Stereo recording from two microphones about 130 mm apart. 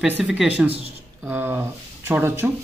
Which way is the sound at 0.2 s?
5° right (ahead or behind).